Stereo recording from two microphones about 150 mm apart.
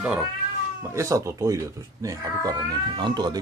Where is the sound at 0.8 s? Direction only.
20° right (ahead or behind).